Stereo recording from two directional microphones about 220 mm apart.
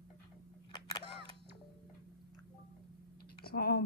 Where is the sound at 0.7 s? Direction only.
20° left (ahead or behind).